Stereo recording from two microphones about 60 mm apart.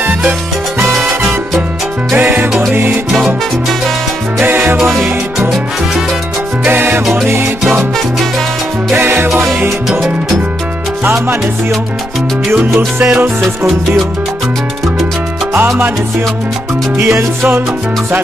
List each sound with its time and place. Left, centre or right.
0.8 s salsa music: centre
2.1 s salsa music: right
2.7 s music: right
4.5 s music: right
6.6 s salsa music: right
8.9 s music: right
9.8 s music: centre
12.4 s salsa music: centre
13.4 s music: centre